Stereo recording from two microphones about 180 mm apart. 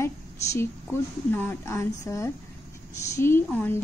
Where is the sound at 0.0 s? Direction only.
15° left (ahead or behind).